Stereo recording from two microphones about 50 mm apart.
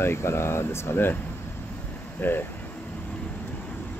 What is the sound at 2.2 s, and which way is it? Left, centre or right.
Speech, left.